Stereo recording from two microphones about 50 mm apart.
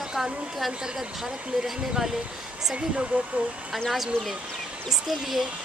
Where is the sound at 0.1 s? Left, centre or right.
Centre.